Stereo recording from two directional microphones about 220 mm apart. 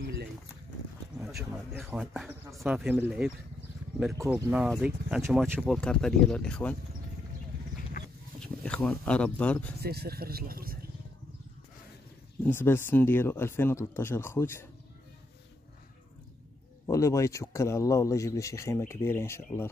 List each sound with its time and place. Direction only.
1.1 s speech: 5° right (ahead or behind)
8.4 s speech: 5° left (ahead or behind)
9.8 s speech: 45° right (ahead or behind)
12.4 s speech: 10° left (ahead or behind)
16.8 s speech: 15° left (ahead or behind)